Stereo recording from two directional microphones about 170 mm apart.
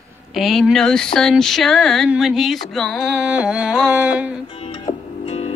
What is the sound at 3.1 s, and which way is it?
Music, 5° right (ahead or behind).